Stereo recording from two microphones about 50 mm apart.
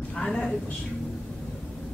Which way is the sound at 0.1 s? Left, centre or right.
Centre.